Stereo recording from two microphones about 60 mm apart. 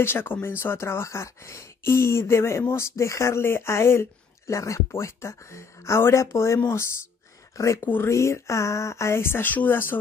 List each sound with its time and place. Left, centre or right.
0.0 s speech: left
7.8 s speech: left
8.1 s speech: left